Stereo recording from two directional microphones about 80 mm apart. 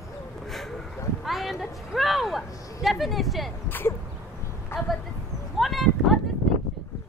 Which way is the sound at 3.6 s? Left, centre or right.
Left.